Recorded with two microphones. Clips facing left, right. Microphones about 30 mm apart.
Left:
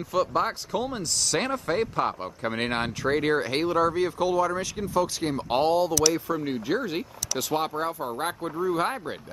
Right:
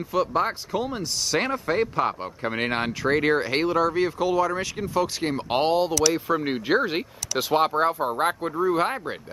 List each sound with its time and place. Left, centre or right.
0.1 s speech: centre